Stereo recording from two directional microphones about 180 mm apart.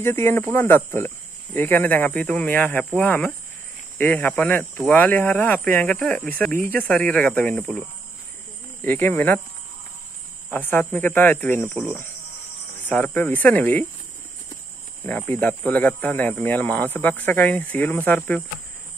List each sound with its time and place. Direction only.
0.0 s speech: 10° left (ahead or behind)
8.8 s speech: 10° left (ahead or behind)
10.5 s speech: 10° left (ahead or behind)
15.0 s speech: 10° left (ahead or behind)